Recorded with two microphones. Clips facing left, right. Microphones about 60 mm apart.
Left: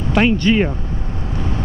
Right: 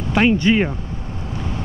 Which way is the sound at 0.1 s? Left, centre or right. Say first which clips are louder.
Even; centre.